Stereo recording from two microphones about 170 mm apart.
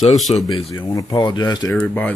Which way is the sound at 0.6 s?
20° left (ahead or behind).